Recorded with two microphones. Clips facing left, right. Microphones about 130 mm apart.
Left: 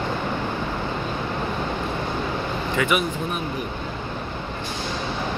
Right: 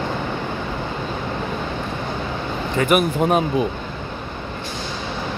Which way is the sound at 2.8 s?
50° right (ahead or behind).